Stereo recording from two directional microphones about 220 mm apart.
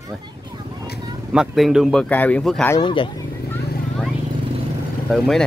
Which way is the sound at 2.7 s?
20° left (ahead or behind).